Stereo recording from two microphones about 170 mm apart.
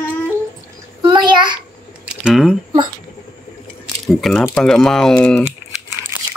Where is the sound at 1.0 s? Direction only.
25° right (ahead or behind).